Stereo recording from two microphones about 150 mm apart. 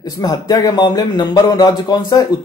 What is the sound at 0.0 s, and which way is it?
Speech, 25° left (ahead or behind).